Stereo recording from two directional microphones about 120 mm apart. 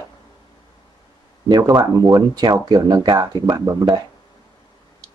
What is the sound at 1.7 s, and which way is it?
Speech, 30° right (ahead or behind).